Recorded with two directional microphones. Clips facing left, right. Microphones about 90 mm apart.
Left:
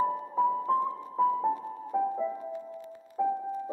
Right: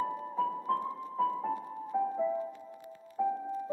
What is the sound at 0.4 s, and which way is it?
Music, 25° left (ahead or behind).